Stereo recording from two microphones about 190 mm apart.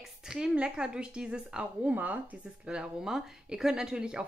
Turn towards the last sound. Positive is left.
turn(degrees=-5)  # may be behind; listen again after turning